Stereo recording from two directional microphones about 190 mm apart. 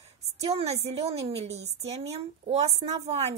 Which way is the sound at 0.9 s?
30° right (ahead or behind).